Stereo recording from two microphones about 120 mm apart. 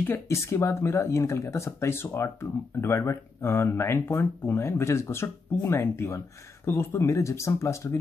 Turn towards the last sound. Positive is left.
turn(degrees=25)  # may be behind; listen again after turning